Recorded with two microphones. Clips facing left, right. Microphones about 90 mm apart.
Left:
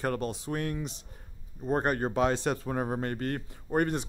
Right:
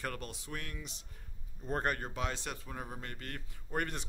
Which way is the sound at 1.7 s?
20° left (ahead or behind).